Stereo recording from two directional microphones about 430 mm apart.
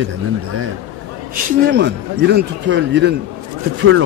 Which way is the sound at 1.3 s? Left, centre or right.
Right.